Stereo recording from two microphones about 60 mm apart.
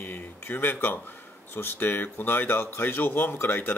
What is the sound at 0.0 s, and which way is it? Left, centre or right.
Speech, left.